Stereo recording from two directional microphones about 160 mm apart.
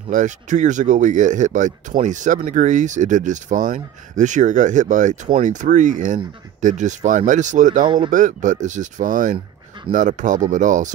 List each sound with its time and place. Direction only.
0.1 s speech: 50° right (ahead or behind)
7.8 s speech: 30° right (ahead or behind)
8.1 s speech: 50° right (ahead or behind)